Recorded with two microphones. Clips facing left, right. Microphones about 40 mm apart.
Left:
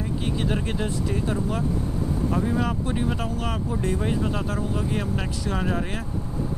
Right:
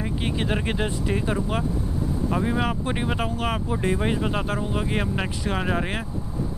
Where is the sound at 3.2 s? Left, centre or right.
Right.